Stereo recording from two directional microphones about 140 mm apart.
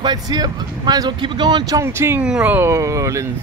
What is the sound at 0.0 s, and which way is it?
Speech, 30° right (ahead or behind).